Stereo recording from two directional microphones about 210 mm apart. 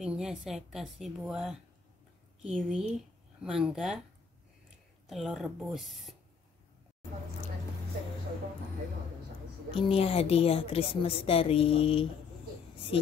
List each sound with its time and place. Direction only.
0.0 s speech: 5° right (ahead or behind)
5.0 s speech: centre (ahead or behind)
9.7 s a woman's voice: 25° left (ahead or behind)